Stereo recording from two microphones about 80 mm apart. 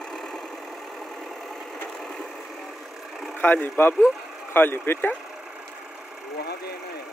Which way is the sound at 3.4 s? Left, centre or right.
Left.